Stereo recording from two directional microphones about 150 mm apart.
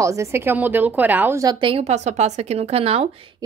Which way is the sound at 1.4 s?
30° right (ahead or behind).